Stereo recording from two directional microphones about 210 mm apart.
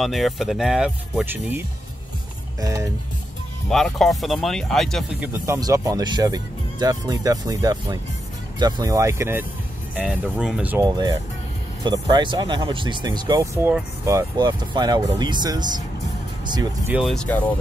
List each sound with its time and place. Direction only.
0.0 s speech: centre (ahead or behind)
2.6 s speech: 15° right (ahead or behind)
3.7 s speech: centre (ahead or behind)
5.2 s speech: 10° right (ahead or behind)
10.9 s speech: 20° right (ahead or behind)
16.9 s speech: centre (ahead or behind)